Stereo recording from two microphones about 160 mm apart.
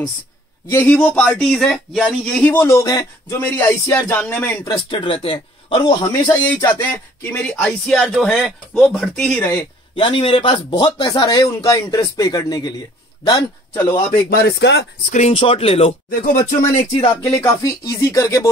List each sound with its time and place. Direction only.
0.7 s speech: 10° left (ahead or behind)
3.3 s speech: 15° left (ahead or behind)
4.8 s a man's voice: 30° left (ahead or behind)
6.8 s speech: 10° left (ahead or behind)
9.9 s speech: 30° left (ahead or behind)
14.3 s speech: 85° left
15.0 s a man's voice: 45° left (ahead or behind)
16.1 s speech: 55° left (ahead or behind)
17.1 s speech: 20° left (ahead or behind)